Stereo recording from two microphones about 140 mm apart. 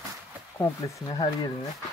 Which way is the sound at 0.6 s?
25° left (ahead or behind).